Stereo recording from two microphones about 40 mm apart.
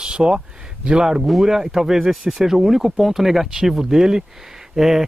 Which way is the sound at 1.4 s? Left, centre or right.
Centre.